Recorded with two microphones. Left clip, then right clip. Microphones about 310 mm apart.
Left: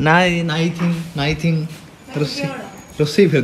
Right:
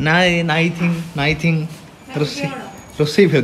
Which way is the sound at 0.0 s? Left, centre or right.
Centre.